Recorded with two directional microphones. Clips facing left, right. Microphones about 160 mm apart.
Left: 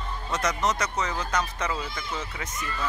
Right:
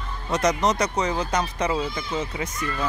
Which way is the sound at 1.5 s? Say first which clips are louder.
Right 6 dB; 30° right (ahead or behind).